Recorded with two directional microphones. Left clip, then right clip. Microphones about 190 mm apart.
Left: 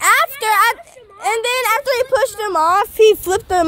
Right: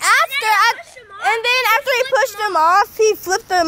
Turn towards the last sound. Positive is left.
turn(degrees=60)  # may be behind; listen again after turning